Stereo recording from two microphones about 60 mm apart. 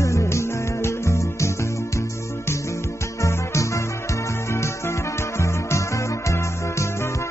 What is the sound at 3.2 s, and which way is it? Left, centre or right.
Music, left.